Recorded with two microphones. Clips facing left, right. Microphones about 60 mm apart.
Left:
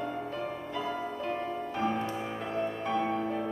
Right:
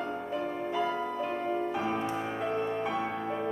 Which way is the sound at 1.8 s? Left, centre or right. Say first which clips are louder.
Even; centre.